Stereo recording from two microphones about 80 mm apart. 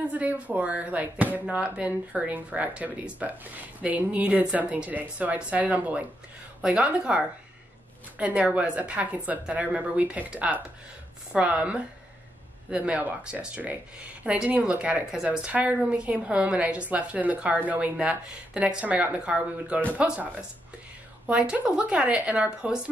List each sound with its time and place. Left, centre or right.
0.0 s a woman's voice: centre